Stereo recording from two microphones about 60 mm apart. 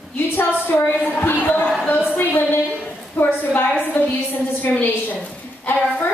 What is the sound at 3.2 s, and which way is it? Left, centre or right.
A woman's voice, left.